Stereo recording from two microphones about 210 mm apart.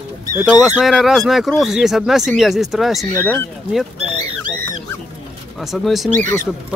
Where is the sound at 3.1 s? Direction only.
10° left (ahead or behind).